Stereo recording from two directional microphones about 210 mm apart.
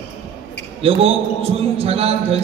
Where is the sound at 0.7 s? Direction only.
30° right (ahead or behind).